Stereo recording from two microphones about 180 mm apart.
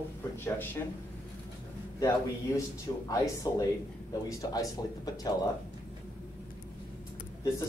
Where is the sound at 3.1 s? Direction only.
15° left (ahead or behind).